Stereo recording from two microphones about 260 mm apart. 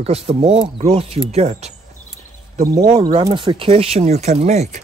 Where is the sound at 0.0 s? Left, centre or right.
Right.